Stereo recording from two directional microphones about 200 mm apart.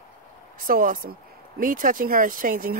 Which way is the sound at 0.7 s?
45° right (ahead or behind).